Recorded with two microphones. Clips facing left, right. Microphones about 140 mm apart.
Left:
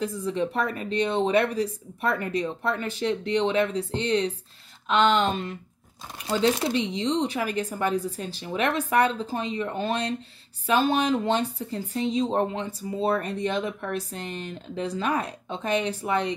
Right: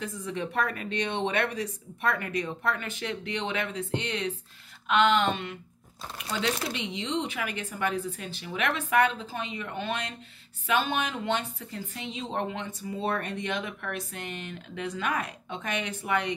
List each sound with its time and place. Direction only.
0.0 s speech: 30° left (ahead or behind)